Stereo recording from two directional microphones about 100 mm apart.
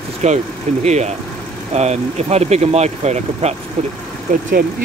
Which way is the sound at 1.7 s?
90° right.